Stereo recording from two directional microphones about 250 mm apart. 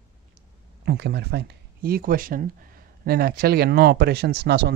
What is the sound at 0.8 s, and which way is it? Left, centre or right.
Speech, right.